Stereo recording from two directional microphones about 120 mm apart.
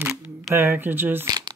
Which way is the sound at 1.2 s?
35° right (ahead or behind).